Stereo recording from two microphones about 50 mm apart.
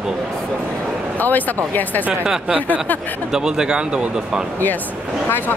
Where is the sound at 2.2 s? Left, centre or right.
Centre.